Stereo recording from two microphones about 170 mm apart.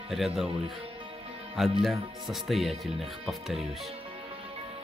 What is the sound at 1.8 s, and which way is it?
Speech, centre (ahead or behind).